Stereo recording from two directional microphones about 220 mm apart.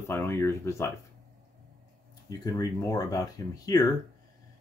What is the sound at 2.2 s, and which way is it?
Speech, 15° left (ahead or behind).